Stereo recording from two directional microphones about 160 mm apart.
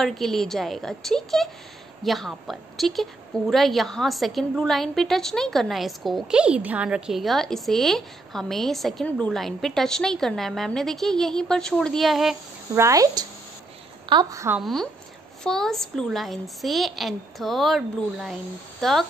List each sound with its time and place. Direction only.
0.0 s a woman's voice: centre (ahead or behind)
12.7 s a woman's voice: 20° right (ahead or behind)
14.6 s a woman's voice: centre (ahead or behind)